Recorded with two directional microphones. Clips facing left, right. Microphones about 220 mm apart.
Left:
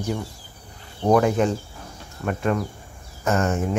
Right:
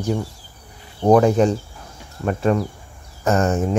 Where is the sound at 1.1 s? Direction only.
35° right (ahead or behind).